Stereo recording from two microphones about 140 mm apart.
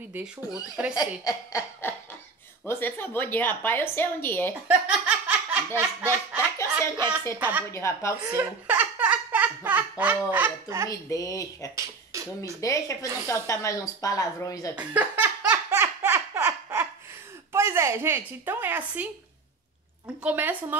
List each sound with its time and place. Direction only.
0.1 s speech: 5° right (ahead or behind)
0.9 s a woman's voice: 25° left (ahead or behind)
4.6 s laughter: 10° right (ahead or behind)
5.8 s speech: 15° right (ahead or behind)
7.7 s speech: 20° left (ahead or behind)
8.3 s laughter: 15° right (ahead or behind)
10.9 s speech: 25° left (ahead or behind)
11.7 s a sound: 20° right (ahead or behind)
12.5 s speech: 20° left (ahead or behind)
14.8 s laughter: 10° right (ahead or behind)
17.5 s a sound: 20° right (ahead or behind)
20.2 s speech: 10° right (ahead or behind)